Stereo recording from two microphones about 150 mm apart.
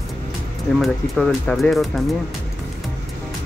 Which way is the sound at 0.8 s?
5° left (ahead or behind).